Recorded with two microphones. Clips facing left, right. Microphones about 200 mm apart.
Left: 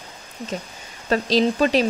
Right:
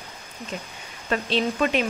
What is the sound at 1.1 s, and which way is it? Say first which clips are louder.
Speech: left 5 dB; 35° left (ahead or behind).